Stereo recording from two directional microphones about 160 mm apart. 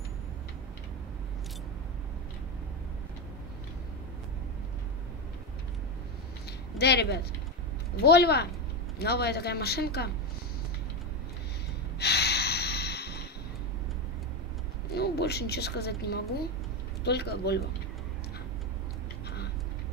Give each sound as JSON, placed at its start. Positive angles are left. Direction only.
{"t": 6.8, "sound": "speech", "side_deg": 90}
{"t": 12.0, "sound": "snort", "side_deg": 90}
{"t": 15.0, "sound": "speech", "side_deg": 90}